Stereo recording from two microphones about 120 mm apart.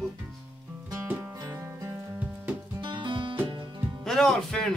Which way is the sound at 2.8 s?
40° right (ahead or behind).